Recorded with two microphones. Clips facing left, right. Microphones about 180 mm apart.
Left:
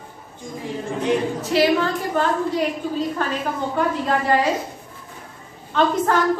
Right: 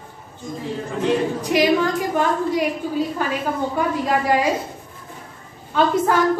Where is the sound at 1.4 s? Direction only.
15° right (ahead or behind).